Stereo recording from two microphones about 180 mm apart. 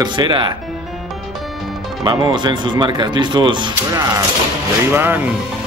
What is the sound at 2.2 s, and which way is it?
Speech, 25° right (ahead or behind).